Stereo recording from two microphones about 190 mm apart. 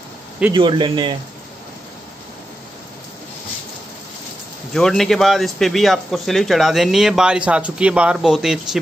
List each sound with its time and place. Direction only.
0.5 s a man's voice: 25° right (ahead or behind)
4.7 s speech: centre (ahead or behind)